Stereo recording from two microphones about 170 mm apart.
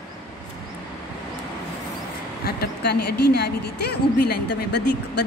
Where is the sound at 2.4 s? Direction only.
70° left (ahead or behind).